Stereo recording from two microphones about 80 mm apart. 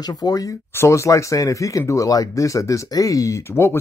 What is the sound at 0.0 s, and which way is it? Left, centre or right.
Speech, left.